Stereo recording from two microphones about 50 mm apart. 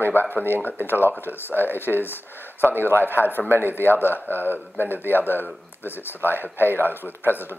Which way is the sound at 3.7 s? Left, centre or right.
Left.